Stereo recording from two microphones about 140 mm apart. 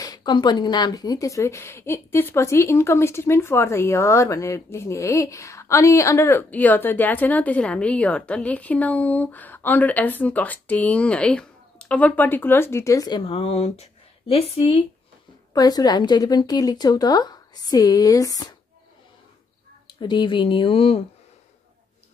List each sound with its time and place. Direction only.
0.0 s speech: 30° left (ahead or behind)
13.2 s speech: 45° left (ahead or behind)
15.5 s a woman's voice: 25° left (ahead or behind)
19.9 s speech: 35° left (ahead or behind)